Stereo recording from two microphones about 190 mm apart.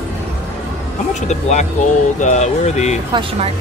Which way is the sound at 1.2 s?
35° left (ahead or behind).